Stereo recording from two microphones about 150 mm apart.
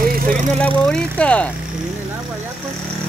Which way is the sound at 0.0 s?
70° right (ahead or behind).